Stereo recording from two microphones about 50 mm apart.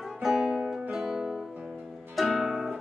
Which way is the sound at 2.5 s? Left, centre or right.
Centre.